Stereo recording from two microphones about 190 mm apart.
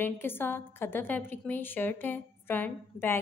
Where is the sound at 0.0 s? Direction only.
10° left (ahead or behind).